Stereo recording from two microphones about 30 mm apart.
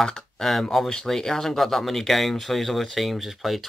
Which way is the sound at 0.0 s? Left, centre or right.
Left.